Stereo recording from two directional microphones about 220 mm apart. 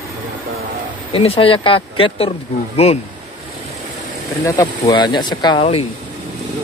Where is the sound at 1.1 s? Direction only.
25° left (ahead or behind).